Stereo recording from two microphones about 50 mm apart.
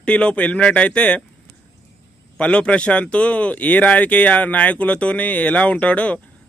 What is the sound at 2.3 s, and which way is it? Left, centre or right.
Speech, left.